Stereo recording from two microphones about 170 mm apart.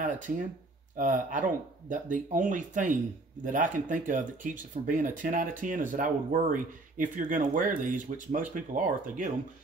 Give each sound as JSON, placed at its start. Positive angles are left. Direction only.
{"t": 0.9, "sound": "speech", "side_deg": -50}